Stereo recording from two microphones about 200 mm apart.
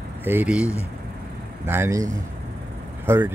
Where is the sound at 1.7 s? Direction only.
15° right (ahead or behind).